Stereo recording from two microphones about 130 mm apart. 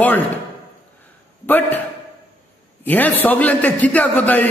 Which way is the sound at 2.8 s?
15° left (ahead or behind).